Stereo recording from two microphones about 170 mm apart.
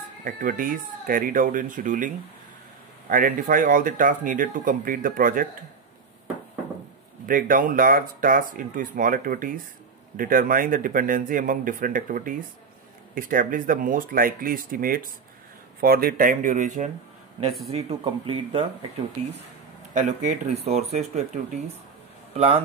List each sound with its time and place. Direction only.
0.2 s speech: 55° right (ahead or behind)
7.2 s speech: 55° right (ahead or behind); by 18.7 s 30° right (ahead or behind)
19.9 s speech: 45° right (ahead or behind)
22.3 s a man's voice: 35° right (ahead or behind)